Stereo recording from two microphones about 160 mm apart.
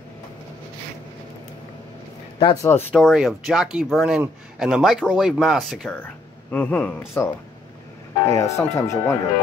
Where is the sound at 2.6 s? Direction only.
15° left (ahead or behind).